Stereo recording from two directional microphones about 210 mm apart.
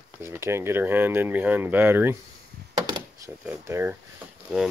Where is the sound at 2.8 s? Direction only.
15° right (ahead or behind).